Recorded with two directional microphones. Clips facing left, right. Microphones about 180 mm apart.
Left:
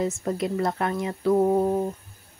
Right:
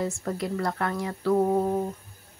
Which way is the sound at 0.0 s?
20° left (ahead or behind).